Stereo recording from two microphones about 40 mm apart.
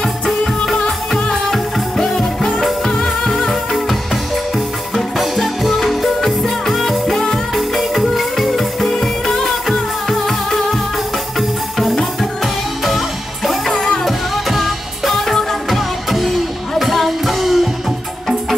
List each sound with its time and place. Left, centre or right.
0.0 s music: left
0.8 s music: centre
4.9 s music: centre